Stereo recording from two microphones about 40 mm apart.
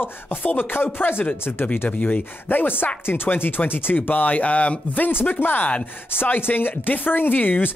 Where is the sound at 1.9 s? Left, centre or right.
Left.